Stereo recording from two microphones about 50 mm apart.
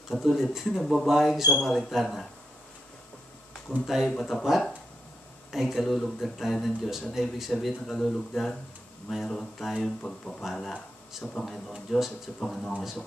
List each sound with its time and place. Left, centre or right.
0.1 s speech: centre
3.8 s speech: centre
7.8 s speech: centre
10.0 s speech: centre
10.4 s speech: centre